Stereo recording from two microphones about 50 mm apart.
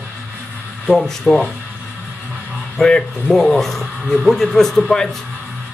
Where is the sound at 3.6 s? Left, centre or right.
Centre.